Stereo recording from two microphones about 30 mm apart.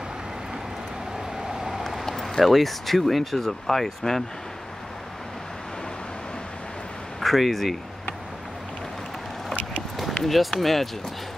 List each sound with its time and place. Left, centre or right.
1.5 s vehicle: centre
2.4 s speech: centre
7.2 s speech: centre
10.2 s speech: centre